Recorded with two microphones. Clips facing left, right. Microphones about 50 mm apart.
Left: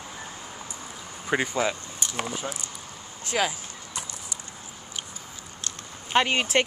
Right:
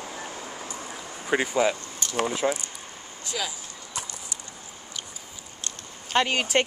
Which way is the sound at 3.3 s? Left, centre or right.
Left.